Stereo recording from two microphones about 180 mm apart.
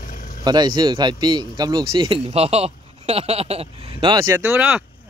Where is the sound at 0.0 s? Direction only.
45° left (ahead or behind).